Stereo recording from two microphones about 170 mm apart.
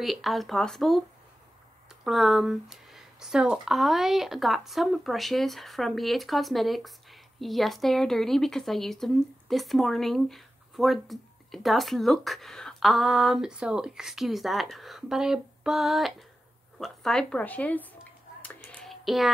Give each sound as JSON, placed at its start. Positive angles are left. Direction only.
{"t": 0.0, "sound": "speech", "side_deg": 0}
{"t": 2.0, "sound": "speech", "side_deg": 0}
{"t": 18.4, "sound": "a sound", "side_deg": 10}